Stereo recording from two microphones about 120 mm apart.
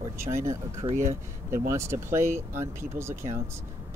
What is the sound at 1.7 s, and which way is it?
Speech, 20° right (ahead or behind).